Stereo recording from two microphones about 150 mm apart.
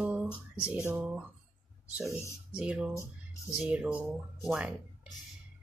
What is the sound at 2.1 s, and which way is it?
Speech, 20° left (ahead or behind).